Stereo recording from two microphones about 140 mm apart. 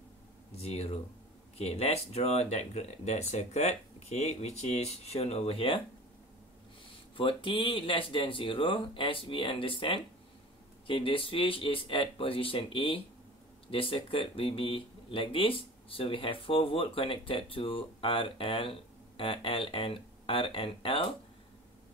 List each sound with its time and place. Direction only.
0.6 s speech: 45° left (ahead or behind)
7.2 s speech: 40° left (ahead or behind)